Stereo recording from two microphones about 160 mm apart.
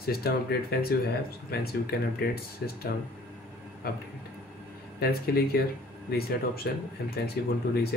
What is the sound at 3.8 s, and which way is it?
Speech, 80° left.